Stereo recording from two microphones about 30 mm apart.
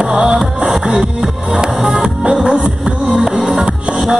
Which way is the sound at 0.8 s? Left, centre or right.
Right.